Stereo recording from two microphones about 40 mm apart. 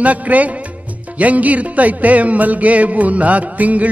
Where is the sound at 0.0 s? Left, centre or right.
Right.